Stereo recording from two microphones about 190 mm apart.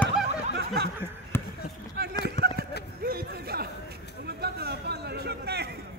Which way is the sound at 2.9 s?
55° right (ahead or behind).